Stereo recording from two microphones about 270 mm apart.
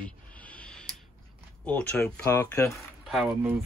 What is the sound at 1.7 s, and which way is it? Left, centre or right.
Speech, centre.